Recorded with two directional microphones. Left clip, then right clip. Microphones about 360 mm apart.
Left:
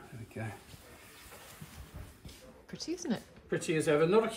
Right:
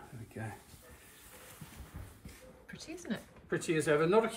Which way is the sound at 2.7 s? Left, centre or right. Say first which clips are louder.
Left 5 dB; centre.